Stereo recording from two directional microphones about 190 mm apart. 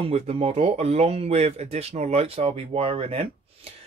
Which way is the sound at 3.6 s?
30° right (ahead or behind).